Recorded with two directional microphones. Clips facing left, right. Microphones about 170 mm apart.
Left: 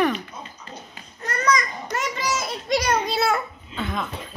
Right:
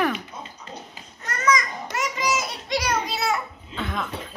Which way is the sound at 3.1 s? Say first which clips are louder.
Left 3 dB; 55° left (ahead or behind).